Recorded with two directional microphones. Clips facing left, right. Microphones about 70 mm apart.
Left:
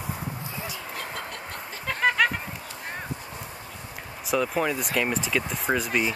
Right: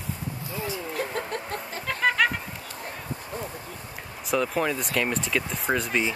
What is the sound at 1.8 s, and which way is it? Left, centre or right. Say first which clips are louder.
Chicken: left 1 dB; centre.